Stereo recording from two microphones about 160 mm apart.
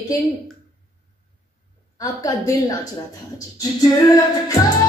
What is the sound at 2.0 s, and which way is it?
Music, 20° left (ahead or behind).